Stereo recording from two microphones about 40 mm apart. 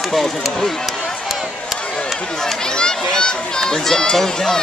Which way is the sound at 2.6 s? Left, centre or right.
Centre.